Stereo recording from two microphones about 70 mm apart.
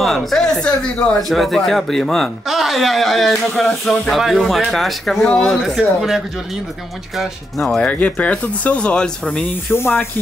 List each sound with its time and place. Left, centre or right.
0.0 s speech: centre
7.8 s speech: centre
9.7 s speech: left